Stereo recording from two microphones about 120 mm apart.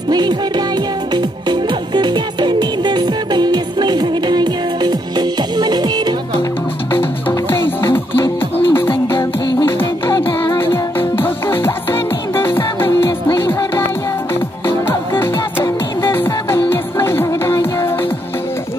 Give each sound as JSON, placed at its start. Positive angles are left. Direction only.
{"t": 0.1, "sound": "music", "side_deg": -35}
{"t": 6.9, "sound": "music", "side_deg": 20}